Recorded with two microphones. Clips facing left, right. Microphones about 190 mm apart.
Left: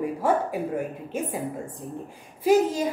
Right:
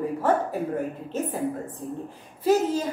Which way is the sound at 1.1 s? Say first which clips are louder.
Right 2 dB; 10° left (ahead or behind).